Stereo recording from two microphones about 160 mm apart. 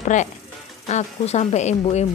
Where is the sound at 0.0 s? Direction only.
50° left (ahead or behind).